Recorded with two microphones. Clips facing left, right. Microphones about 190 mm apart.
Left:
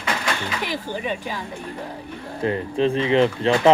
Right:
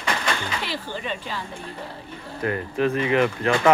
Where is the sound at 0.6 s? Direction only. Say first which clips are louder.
Left 4 dB; 15° left (ahead or behind).